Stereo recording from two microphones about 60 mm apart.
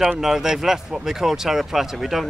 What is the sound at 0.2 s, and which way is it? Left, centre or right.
Speech, centre.